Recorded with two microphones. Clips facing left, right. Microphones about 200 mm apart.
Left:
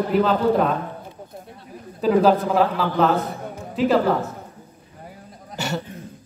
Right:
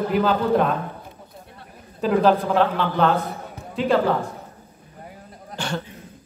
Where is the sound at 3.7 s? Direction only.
5° left (ahead or behind).